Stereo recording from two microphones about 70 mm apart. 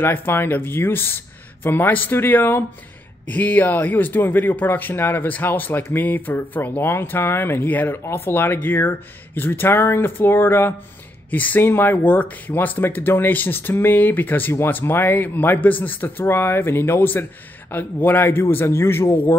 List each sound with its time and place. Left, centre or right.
0.0 s speech: left